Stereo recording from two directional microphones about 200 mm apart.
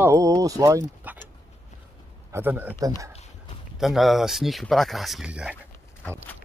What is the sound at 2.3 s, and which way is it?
Speech, 10° right (ahead or behind).